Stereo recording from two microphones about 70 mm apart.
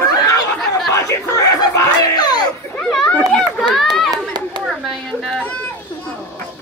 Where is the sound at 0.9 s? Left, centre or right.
Left.